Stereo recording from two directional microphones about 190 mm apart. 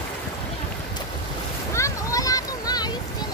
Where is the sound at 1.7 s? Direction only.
15° left (ahead or behind).